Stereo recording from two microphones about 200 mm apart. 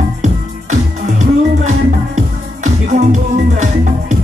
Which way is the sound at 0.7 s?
35° right (ahead or behind).